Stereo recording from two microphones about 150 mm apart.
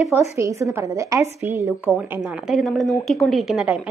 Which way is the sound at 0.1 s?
20° right (ahead or behind).